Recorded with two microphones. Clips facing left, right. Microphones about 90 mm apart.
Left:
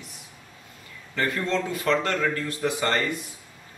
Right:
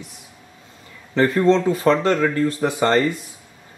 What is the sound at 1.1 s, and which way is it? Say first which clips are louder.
Speech: right 10 dB; 30° right (ahead or behind).